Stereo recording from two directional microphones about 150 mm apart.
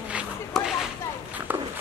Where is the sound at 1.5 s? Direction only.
10° right (ahead or behind).